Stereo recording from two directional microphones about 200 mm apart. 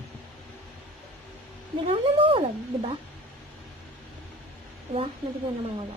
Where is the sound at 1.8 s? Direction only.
25° right (ahead or behind).